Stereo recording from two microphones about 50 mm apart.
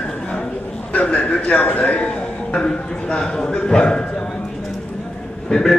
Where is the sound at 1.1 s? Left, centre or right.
Left.